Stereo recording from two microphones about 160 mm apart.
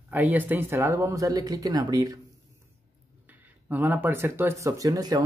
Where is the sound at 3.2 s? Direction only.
10° right (ahead or behind).